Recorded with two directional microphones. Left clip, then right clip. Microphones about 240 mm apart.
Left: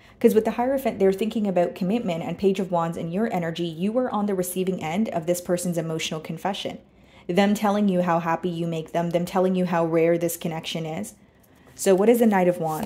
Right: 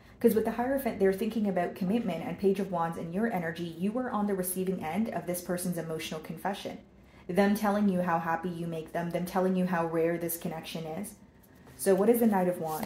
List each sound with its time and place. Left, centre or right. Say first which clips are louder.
0.2 s speech: left 7 dB; left